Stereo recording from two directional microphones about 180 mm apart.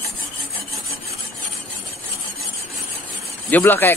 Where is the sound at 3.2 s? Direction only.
10° left (ahead or behind).